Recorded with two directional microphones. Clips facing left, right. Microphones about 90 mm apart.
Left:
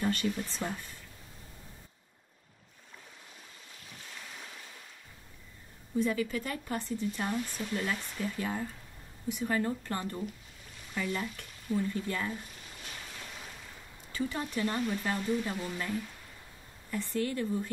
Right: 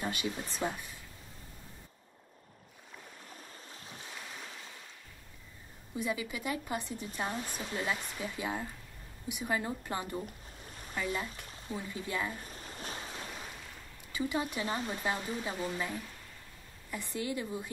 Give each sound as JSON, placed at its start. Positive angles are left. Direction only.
{"t": 0.0, "sound": "speech", "side_deg": -15}
{"t": 4.0, "sound": "waves", "side_deg": -15}
{"t": 5.9, "sound": "speech", "side_deg": -10}
{"t": 12.4, "sound": "waves", "side_deg": -40}
{"t": 14.1, "sound": "speech", "side_deg": -10}
{"t": 16.9, "sound": "speech", "side_deg": -15}